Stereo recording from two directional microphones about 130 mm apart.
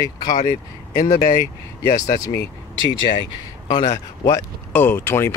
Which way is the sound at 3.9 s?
25° left (ahead or behind).